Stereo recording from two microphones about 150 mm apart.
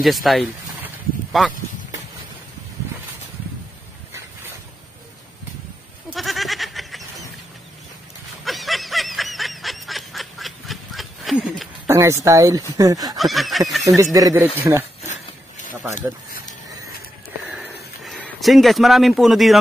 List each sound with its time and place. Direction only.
0.0 s snicker: centre (ahead or behind)
6.0 s goat: centre (ahead or behind)
8.5 s snicker: centre (ahead or behind)
11.9 s speech: 20° right (ahead or behind)
13.2 s snicker: centre (ahead or behind)
13.9 s speech: 25° right (ahead or behind)
17.5 s a sound: centre (ahead or behind)